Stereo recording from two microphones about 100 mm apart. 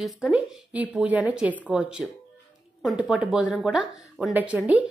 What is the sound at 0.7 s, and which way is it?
Speech, 15° right (ahead or behind).